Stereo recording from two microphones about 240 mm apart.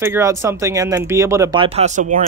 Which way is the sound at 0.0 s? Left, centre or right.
Centre.